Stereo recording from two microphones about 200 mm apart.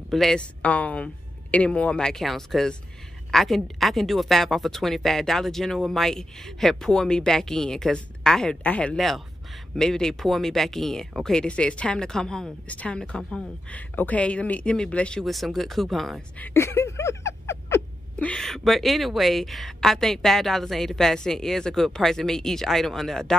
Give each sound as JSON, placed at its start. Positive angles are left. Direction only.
{"t": 0.1, "sound": "speech", "side_deg": 0}